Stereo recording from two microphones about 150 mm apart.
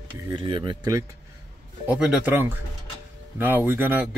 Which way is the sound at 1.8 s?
5° right (ahead or behind).